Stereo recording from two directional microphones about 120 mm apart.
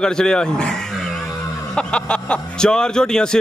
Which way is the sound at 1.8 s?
10° left (ahead or behind).